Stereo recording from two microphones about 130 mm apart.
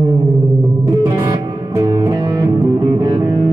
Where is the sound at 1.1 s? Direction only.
25° right (ahead or behind).